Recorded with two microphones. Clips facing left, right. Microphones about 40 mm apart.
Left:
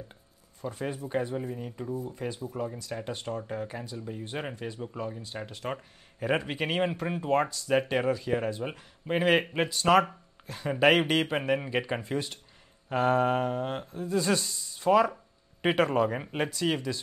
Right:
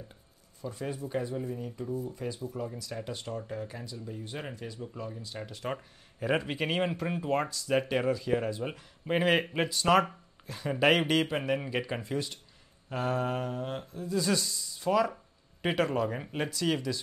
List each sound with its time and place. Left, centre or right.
0.6 s speech: left
5.6 s speech: centre
9.0 s speech: centre